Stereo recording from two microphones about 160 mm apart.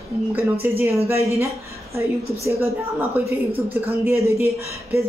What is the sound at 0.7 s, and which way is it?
Speech, 15° right (ahead or behind).